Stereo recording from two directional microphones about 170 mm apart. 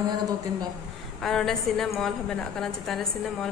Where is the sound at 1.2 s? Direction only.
Centre (ahead or behind).